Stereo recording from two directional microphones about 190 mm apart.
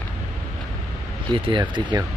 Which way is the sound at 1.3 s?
25° right (ahead or behind).